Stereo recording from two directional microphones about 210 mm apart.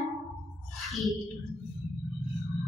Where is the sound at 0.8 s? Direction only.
Centre (ahead or behind).